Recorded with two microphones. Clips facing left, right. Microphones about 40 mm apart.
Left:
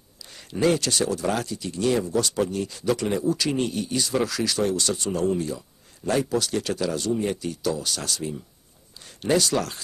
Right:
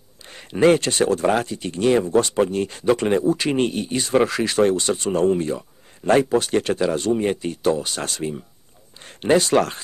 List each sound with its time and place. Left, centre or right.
0.3 s speech: right